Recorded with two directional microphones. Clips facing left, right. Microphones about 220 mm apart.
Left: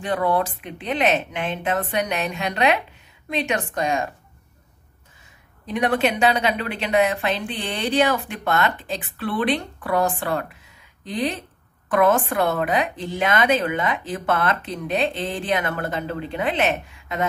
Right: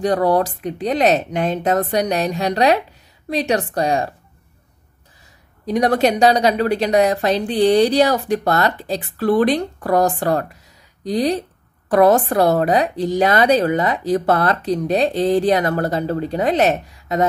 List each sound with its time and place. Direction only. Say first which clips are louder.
0.0 s a woman's voice: right 6 dB; 40° right (ahead or behind)
5.7 s a woman's voice: right 5 dB; 40° right (ahead or behind)